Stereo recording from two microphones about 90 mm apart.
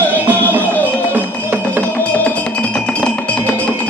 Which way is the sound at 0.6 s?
20° left (ahead or behind).